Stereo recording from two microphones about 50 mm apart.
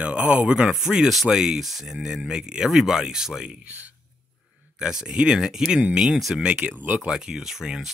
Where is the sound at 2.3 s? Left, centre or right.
Centre.